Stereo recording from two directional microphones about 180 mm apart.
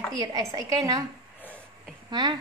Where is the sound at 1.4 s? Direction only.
10° left (ahead or behind).